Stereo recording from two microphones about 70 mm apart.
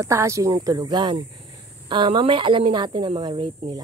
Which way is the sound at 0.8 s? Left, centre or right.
Right.